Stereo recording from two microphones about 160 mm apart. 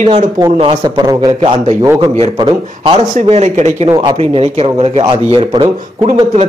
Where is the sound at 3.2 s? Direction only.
45° right (ahead or behind).